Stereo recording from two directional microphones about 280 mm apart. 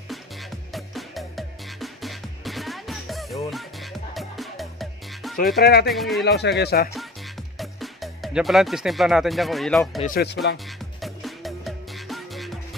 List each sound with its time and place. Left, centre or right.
0.7 s music: centre
5.6 s speech: left
5.9 s speech: centre
6.2 s speech: left
7.5 s speech: centre
10.0 s speech: left
11.0 s music: centre